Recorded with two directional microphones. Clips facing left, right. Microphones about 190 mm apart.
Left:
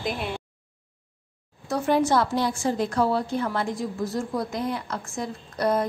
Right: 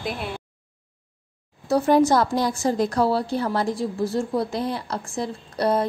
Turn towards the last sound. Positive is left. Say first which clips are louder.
# right 2 dB
turn(degrees=-30)  # may be behind; listen again after turning